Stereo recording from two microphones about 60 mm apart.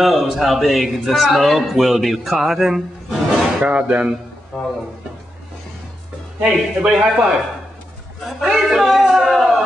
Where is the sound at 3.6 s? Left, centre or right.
Right.